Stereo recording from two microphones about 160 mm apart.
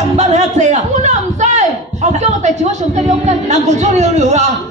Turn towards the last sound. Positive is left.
turn(degrees=-45)  # may be behind; listen again after turning